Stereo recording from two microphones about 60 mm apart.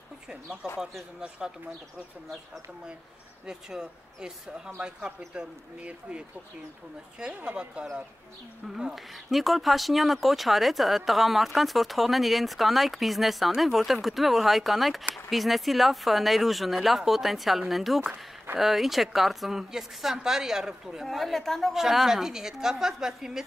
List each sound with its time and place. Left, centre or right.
0.3 s a woman's voice: centre
3.4 s a woman's voice: centre
7.4 s a woman's voice: centre
8.6 s speech: centre
21.7 s a woman's voice: centre